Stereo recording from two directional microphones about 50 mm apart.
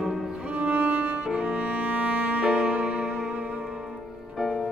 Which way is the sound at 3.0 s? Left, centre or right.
Centre.